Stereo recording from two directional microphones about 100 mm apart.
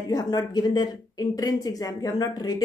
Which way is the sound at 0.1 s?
40° left (ahead or behind).